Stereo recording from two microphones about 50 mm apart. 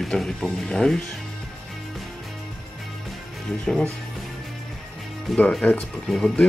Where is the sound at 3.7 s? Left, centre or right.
Centre.